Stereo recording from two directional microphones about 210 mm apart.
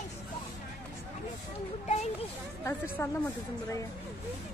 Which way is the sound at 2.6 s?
15° left (ahead or behind).